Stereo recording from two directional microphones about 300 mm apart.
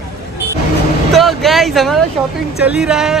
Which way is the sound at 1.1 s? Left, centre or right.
Centre.